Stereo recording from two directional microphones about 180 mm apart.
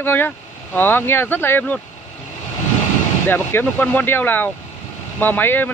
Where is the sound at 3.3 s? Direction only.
10° left (ahead or behind).